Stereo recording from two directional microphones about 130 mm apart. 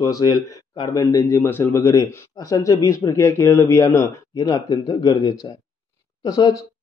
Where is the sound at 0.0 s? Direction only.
30° left (ahead or behind).